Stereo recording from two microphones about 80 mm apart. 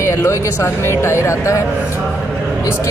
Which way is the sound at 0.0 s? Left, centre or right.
Left.